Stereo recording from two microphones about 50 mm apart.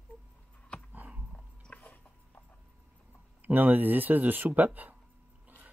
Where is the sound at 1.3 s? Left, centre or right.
Left.